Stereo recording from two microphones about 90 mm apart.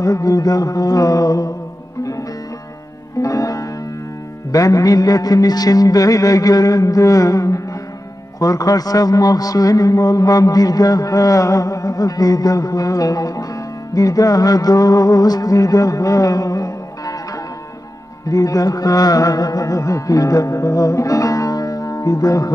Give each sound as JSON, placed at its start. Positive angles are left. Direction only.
{"t": 0.0, "sound": "a man's voice", "side_deg": 40}
{"t": 3.2, "sound": "music", "side_deg": 40}
{"t": 4.5, "sound": "a man's voice", "side_deg": 40}
{"t": 18.3, "sound": "a man's voice", "side_deg": 40}